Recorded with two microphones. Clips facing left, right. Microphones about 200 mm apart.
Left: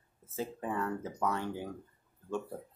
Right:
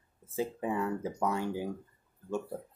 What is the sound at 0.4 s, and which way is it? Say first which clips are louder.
Speech: right 3 dB; 10° right (ahead or behind).